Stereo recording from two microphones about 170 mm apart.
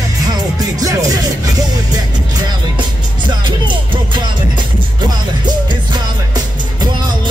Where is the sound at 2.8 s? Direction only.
25° right (ahead or behind).